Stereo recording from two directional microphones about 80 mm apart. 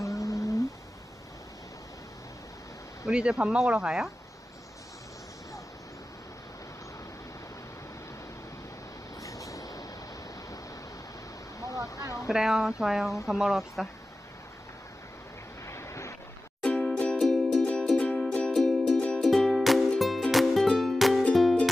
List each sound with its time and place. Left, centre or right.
0.0 s a sound: left
3.1 s speech: centre
9.2 s train: left
11.9 s a sound: left
12.3 s speech: centre
15.6 s vehicle: left
16.6 s music: centre